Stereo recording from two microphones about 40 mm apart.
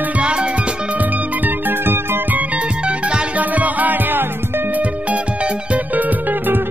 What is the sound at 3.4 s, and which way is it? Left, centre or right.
Music, right.